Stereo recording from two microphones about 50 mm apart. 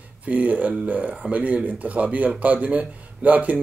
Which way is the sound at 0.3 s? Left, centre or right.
Right.